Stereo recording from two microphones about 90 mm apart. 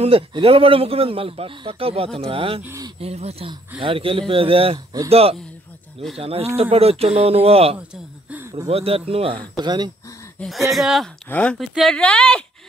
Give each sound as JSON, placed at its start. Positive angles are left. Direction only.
{"t": 0.1, "sound": "a man's voice", "side_deg": -85}
{"t": 7.9, "sound": "a sound", "side_deg": -15}
{"t": 8.7, "sound": "a man's voice", "side_deg": -90}
{"t": 9.6, "sound": "speech", "side_deg": -50}
{"t": 10.7, "sound": "speech", "side_deg": 0}
{"t": 11.2, "sound": "speech", "side_deg": 15}
{"t": 11.5, "sound": "speech", "side_deg": 0}